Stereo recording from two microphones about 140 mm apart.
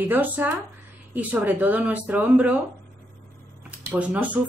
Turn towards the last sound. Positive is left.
turn(degrees=-10)  # may be behind; listen again after turning